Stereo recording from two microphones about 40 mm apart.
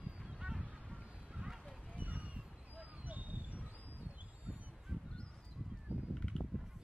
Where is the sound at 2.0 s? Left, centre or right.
Right.